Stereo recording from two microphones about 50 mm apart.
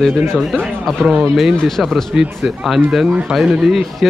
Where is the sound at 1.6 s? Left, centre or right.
Centre.